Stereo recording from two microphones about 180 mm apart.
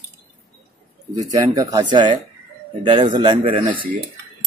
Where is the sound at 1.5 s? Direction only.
25° right (ahead or behind).